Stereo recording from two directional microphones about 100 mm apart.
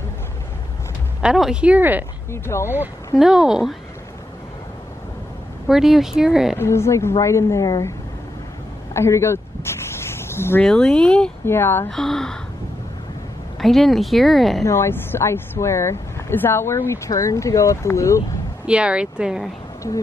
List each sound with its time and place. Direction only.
1.2 s speech: 5° right (ahead or behind)
2.3 s speech: 25° left (ahead or behind)
3.2 s speech: 5° right (ahead or behind)
5.7 s speech: 5° right (ahead or behind)
6.5 s speech: 25° left (ahead or behind)
8.9 s a sound: 25° left (ahead or behind)
10.6 s speech: 5° left (ahead or behind)
11.4 s speech: 20° left (ahead or behind)
11.9 s speech: 5° left (ahead or behind)
13.6 s speech: centre (ahead or behind)
14.6 s speech: 25° left (ahead or behind)
18.7 s speech: 10° right (ahead or behind)
19.8 s speech: 30° left (ahead or behind)